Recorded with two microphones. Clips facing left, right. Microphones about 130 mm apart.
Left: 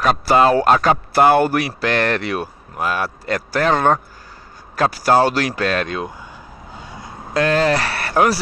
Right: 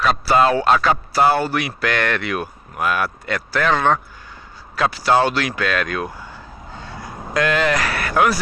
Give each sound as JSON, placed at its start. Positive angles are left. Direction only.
{"t": 0.0, "sound": "a man's voice", "side_deg": 45}
{"t": 1.6, "sound": "speech", "side_deg": 35}
{"t": 6.7, "sound": "vehicle", "side_deg": 10}
{"t": 7.0, "sound": "a sound", "side_deg": 25}